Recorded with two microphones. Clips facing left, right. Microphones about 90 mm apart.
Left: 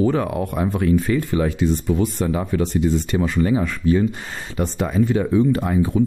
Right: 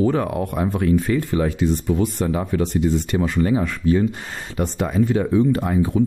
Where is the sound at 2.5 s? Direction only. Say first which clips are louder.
Left 1 dB; 60° right (ahead or behind).